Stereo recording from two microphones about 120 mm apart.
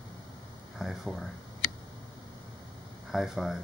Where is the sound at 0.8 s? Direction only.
Centre (ahead or behind).